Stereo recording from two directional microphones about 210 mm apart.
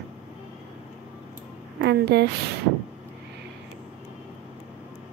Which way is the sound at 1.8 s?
55° right (ahead or behind).